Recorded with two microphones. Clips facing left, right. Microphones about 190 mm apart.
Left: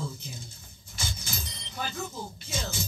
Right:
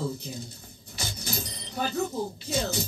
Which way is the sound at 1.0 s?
35° right (ahead or behind).